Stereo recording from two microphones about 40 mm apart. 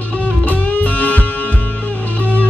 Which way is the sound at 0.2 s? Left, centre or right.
Left.